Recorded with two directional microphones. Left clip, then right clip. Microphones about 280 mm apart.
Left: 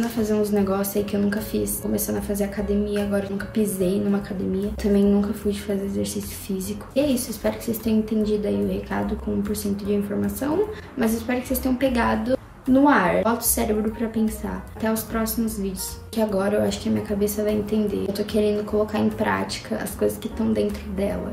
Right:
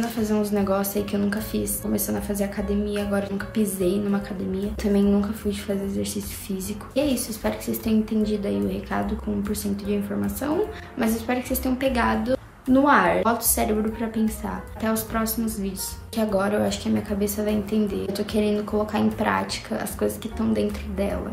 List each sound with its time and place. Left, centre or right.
0.0 s a woman's voice: centre